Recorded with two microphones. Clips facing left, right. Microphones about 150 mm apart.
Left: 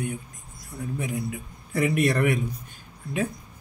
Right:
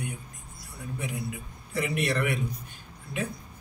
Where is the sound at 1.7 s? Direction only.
50° left (ahead or behind).